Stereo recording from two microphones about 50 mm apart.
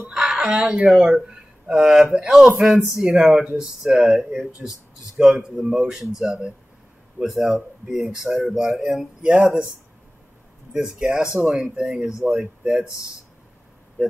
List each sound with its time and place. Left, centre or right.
0.1 s speech: centre
11.0 s speech: centre